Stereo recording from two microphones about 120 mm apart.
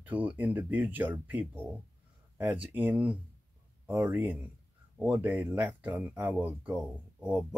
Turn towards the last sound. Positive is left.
turn(degrees=-15)  # may be behind; listen again after turning